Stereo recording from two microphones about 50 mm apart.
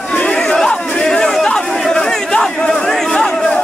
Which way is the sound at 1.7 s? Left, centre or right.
Centre.